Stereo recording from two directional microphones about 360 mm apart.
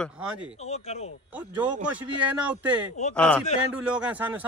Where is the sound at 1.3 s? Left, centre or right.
Centre.